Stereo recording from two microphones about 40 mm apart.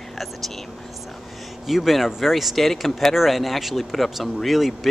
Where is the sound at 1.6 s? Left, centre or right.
Centre.